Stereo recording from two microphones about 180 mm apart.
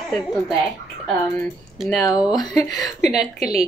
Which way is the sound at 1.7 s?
Centre (ahead or behind).